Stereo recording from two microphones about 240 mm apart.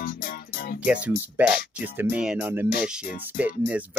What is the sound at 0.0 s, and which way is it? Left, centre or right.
Music, left.